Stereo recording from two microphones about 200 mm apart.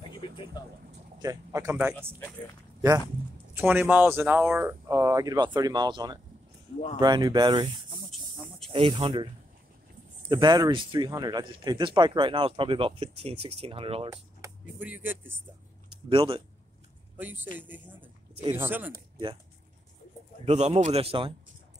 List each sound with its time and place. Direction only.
0.1 s a sound: 20° left (ahead or behind)
1.2 s speech: 15° right (ahead or behind)
3.5 s speech: 10° right (ahead or behind)
8.1 s a sound: centre (ahead or behind)
8.7 s speech: 25° right (ahead or behind)
14.1 s speech: 10° right (ahead or behind)
16.1 s speech: 25° right (ahead or behind)
17.2 s speech: 10° right (ahead or behind)
20.4 s a man's voice: 35° right (ahead or behind)